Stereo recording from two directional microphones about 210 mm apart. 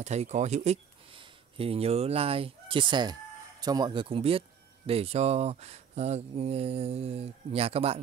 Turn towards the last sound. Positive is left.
turn(degrees=-30)  # may be behind; listen again after turning